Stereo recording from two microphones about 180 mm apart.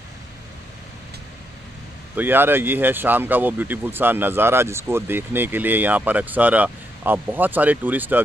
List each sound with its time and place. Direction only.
2.1 s speech: 10° right (ahead or behind)